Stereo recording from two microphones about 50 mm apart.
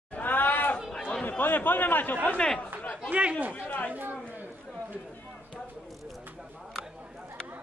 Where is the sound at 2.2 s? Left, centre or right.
Centre.